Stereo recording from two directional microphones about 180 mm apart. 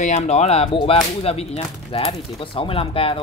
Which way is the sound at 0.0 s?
40° left (ahead or behind).